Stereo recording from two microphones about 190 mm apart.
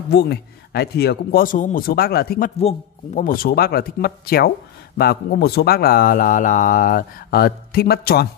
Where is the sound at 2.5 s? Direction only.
35° left (ahead or behind).